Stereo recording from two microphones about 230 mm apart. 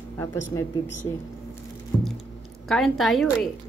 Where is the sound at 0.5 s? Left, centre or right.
Centre.